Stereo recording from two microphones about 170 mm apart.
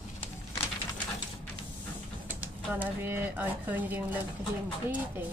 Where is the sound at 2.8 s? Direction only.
10° right (ahead or behind).